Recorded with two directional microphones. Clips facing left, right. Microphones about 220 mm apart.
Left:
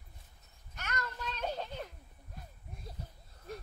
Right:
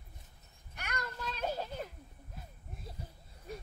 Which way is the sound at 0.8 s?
15° right (ahead or behind).